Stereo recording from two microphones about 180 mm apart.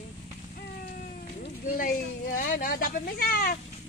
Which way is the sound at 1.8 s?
50° left (ahead or behind).